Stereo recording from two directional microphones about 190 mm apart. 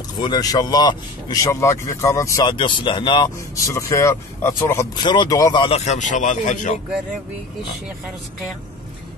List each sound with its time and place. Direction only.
0.2 s speech: 20° left (ahead or behind)
5.9 s speech: 40° left (ahead or behind)